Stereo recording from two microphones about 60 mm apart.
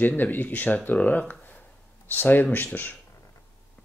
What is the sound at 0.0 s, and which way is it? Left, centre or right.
Speech, left.